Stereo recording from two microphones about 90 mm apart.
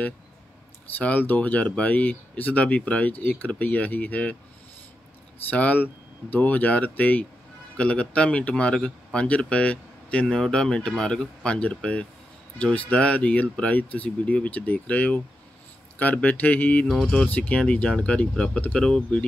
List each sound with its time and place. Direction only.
0.9 s speech: 20° left (ahead or behind)
5.5 s speech: 20° left (ahead or behind)
16.8 s speech: 5° left (ahead or behind)